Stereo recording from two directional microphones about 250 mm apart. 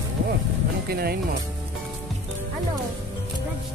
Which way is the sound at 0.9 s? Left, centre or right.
Right.